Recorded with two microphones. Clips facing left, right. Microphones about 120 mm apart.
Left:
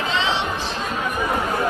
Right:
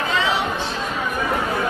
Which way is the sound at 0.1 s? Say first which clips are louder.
Right 2 dB; 25° left (ahead or behind).